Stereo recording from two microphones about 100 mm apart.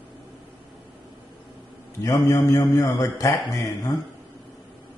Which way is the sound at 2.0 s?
35° left (ahead or behind).